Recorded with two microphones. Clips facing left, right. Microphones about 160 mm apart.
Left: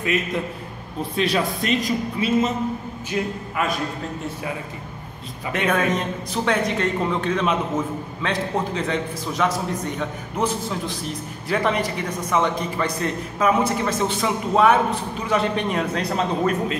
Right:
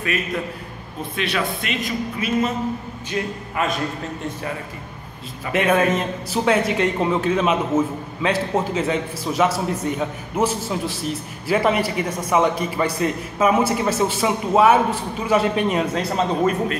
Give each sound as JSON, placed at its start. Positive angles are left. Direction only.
{"t": 1.1, "sound": "a man's voice", "side_deg": 40}
{"t": 3.1, "sound": "a man's voice", "side_deg": 5}
{"t": 5.5, "sound": "a man's voice", "side_deg": -5}